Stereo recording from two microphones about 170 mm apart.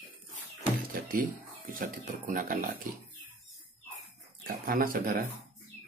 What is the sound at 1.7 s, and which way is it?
Speech, 55° right (ahead or behind).